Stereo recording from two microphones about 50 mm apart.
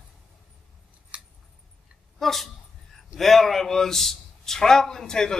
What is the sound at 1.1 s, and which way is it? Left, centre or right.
Scissors, right.